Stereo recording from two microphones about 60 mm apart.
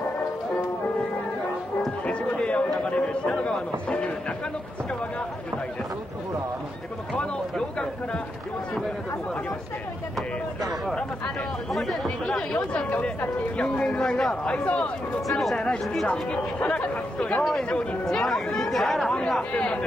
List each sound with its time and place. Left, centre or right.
2.0 s a sound: centre
7.2 s a sound: centre
11.7 s speech: centre
12.5 s speech: left
15.2 s speech: centre
15.5 s speech: centre
16.1 s speech: centre